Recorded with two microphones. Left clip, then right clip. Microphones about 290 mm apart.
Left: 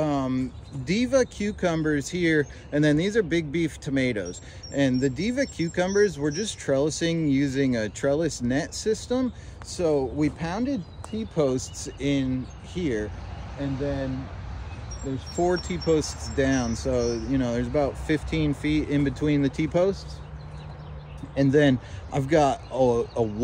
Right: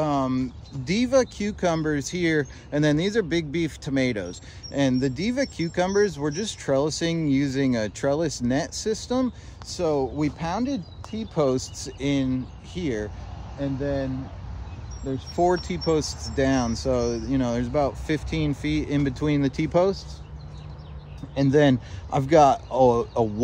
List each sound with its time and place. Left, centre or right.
0.0 s speech: centre
15.1 s speech: centre
21.4 s speech: centre